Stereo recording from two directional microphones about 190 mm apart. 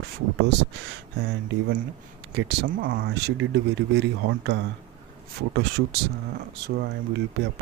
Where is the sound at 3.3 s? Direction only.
65° right (ahead or behind).